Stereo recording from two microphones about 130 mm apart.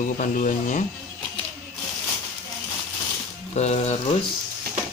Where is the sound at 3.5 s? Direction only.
55° left (ahead or behind).